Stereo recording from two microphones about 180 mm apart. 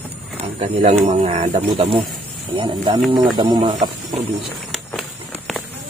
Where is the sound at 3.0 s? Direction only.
Centre (ahead or behind).